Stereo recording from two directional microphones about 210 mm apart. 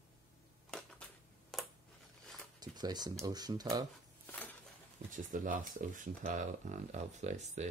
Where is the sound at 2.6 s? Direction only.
20° right (ahead or behind).